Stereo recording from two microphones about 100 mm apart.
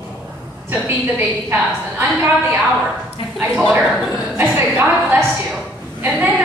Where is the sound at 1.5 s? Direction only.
20° right (ahead or behind).